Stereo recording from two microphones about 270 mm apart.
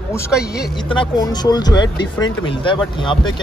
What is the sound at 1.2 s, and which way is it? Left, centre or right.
A man's voice, centre.